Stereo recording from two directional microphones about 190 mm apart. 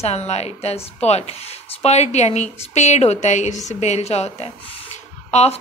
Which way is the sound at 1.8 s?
35° left (ahead or behind).